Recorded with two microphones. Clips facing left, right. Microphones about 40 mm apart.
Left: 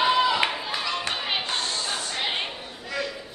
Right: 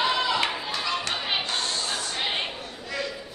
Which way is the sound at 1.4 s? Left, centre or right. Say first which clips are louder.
Even; left.